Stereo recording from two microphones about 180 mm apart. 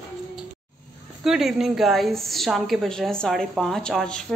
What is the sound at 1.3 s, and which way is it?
A woman's voice, centre (ahead or behind).